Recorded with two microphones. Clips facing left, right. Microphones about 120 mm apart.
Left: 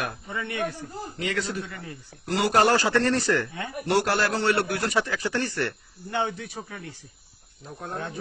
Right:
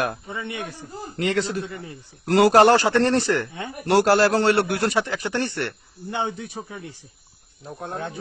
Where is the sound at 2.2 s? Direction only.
75° right (ahead or behind).